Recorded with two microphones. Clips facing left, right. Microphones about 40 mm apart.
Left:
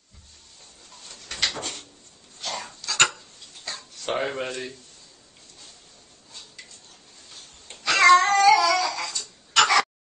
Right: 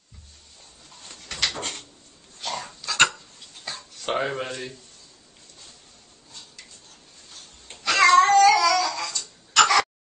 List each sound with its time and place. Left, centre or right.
1.6 s a sound: right
2.4 s dog: centre
3.6 s a sound: centre
7.6 s cat: centre
8.3 s dog: centre
8.6 s music: centre
9.5 s tick-tock: centre